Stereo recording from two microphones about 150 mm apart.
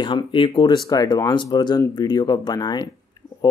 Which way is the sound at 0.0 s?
35° left (ahead or behind).